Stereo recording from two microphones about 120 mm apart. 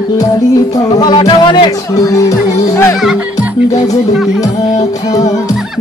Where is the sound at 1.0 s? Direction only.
40° left (ahead or behind).